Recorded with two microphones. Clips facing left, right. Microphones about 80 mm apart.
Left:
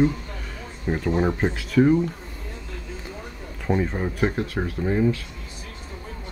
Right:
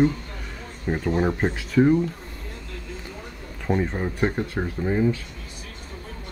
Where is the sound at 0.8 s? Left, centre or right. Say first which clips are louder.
Even; centre.